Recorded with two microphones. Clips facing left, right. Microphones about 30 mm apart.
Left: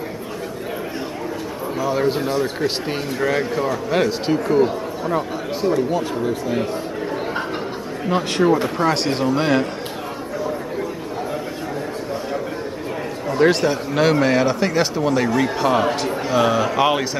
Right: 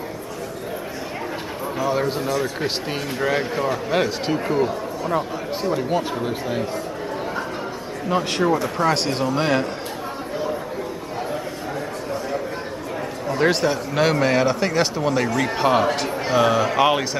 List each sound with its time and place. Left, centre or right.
1.8 s a man's voice: centre
2.1 s a man's voice: left
2.6 s a man's voice: centre
5.6 s speech: centre
8.4 s a man's voice: centre
13.3 s a man's voice: centre
15.4 s speech: centre
15.8 s a man's voice: centre